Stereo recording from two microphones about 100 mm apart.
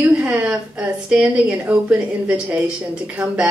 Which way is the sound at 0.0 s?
15° right (ahead or behind).